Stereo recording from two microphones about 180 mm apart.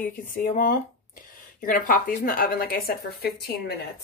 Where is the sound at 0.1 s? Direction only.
50° left (ahead or behind).